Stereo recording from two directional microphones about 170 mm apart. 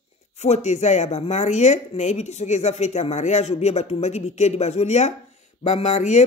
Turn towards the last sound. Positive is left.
turn(degrees=40)  # may be behind; listen again after turning